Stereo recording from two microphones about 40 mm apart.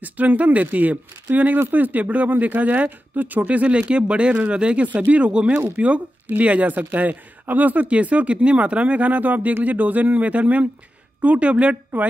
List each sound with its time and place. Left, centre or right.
0.0 s speech: right
4.8 s speech: right
7.9 s speech: right
11.9 s speech: right